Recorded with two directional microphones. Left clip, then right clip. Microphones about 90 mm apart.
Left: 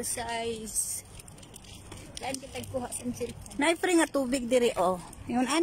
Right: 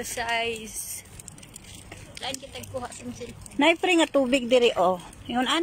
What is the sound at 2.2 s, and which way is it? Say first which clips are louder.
Speech: right 2 dB; 10° left (ahead or behind).